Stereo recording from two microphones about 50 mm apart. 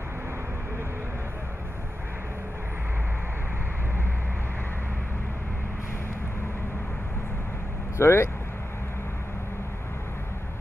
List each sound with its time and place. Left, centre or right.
8.0 s speech: left